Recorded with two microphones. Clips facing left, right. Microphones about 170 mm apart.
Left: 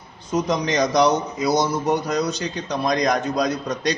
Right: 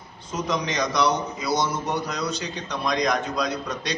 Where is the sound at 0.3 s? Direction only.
40° left (ahead or behind).